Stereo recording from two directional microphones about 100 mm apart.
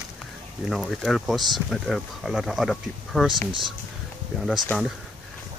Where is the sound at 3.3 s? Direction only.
50° right (ahead or behind).